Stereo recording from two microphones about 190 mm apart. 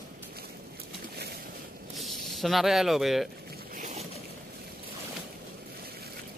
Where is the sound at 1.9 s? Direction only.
Centre (ahead or behind).